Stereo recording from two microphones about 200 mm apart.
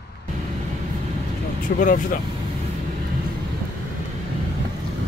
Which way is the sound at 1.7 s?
40° left (ahead or behind).